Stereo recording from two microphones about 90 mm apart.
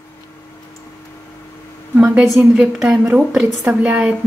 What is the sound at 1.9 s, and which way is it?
Speech, 10° right (ahead or behind).